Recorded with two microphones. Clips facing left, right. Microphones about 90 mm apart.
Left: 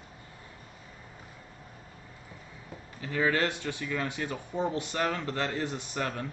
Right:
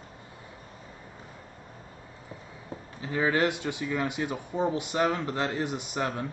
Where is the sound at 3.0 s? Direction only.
15° right (ahead or behind).